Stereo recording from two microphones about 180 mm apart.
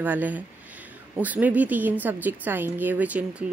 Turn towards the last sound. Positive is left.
turn(degrees=-10)  # may be behind; listen again after turning